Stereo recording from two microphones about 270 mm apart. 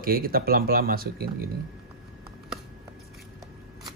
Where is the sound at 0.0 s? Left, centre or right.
Right.